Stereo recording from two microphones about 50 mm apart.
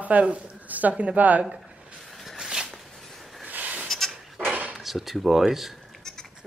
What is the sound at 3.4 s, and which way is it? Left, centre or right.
Sheep, right.